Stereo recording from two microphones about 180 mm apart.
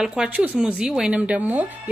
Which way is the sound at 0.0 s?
5° right (ahead or behind).